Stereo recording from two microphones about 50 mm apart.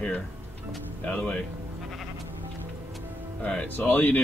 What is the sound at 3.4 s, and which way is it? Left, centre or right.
Speech, left.